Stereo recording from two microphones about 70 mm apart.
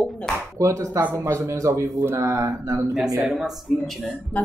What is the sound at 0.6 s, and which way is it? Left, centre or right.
Speech, right.